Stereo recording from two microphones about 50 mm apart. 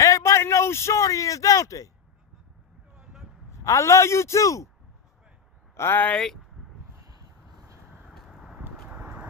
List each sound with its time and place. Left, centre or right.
0.0 s speech: left
3.0 s vehicle: centre
3.5 s a man's voice: left
5.8 s speech: left
6.1 s speech: centre
8.4 s a sound: centre
8.8 s horse: right